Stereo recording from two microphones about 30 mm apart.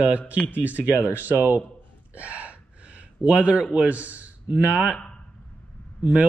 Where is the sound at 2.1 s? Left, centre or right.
Right.